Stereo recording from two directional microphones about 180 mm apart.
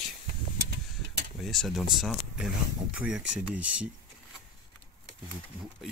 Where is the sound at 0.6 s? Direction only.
65° right (ahead or behind).